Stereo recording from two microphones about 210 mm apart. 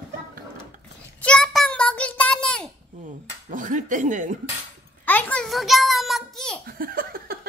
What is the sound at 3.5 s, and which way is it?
Speech, 40° right (ahead or behind).